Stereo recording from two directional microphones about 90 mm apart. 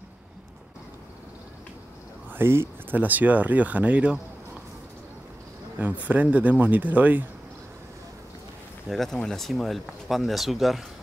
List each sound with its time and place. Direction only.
2.3 s speech: 25° right (ahead or behind)
5.8 s speech: 20° right (ahead or behind)
8.8 s speech: centre (ahead or behind)